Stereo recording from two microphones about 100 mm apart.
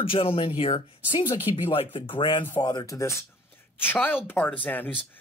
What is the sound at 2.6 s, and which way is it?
A woman's voice, 40° left (ahead or behind).